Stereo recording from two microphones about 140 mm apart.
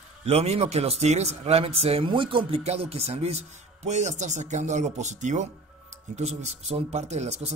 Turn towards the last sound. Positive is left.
turn(degrees=-50)  # may be behind; listen again after turning